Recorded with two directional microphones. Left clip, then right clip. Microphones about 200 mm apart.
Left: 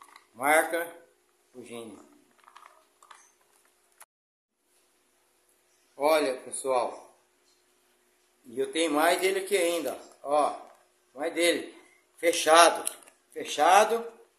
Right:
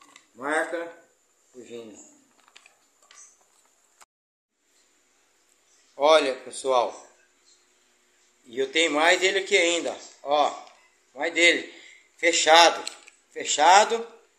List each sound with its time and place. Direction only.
0.4 s speech: 40° left (ahead or behind)
5.9 s a man's voice: centre (ahead or behind)
8.5 s speech: 10° left (ahead or behind)